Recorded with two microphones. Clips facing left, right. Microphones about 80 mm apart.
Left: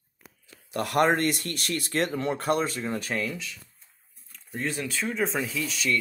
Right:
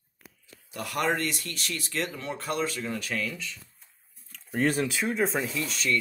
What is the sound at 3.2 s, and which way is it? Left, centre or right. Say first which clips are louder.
Speech: left 2 dB; centre.